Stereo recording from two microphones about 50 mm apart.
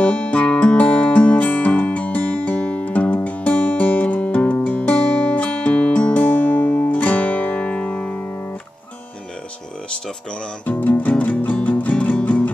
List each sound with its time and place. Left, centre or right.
0.0 s music: left
10.6 s music: left